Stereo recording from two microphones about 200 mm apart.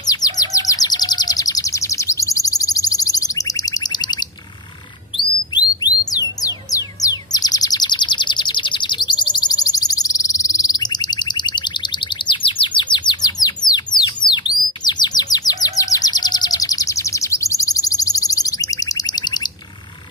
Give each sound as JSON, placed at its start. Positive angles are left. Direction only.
{"t": 0.0, "sound": "chirp", "side_deg": 20}
{"t": 6.1, "sound": "bird", "side_deg": 20}